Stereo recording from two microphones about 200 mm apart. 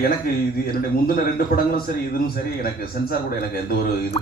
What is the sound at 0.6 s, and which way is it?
A man's voice, 50° left (ahead or behind).